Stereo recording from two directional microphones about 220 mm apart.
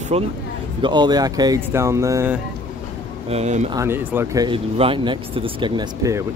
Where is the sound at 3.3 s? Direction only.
30° right (ahead or behind).